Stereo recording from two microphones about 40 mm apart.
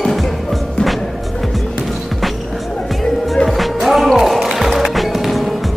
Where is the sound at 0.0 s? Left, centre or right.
Centre.